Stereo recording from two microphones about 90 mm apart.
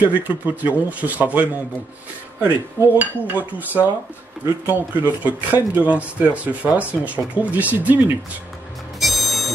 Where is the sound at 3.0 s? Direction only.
20° right (ahead or behind).